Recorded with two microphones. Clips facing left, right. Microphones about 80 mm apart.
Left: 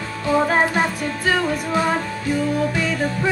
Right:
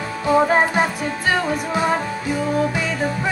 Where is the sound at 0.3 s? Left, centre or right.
Centre.